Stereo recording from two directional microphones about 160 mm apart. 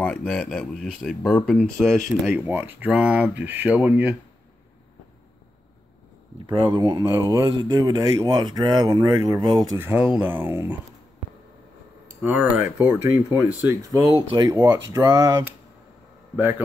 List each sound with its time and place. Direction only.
0.0 s speech: 5° left (ahead or behind)
2.4 s speech: 10° right (ahead or behind)
6.4 s speech: 30° right (ahead or behind)
9.8 s speech: 10° right (ahead or behind)
12.1 s speech: 10° right (ahead or behind)
13.8 s speech: 25° right (ahead or behind)
16.3 s speech: 10° right (ahead or behind)